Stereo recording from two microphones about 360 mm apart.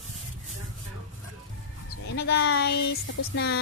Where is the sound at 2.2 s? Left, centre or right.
Left.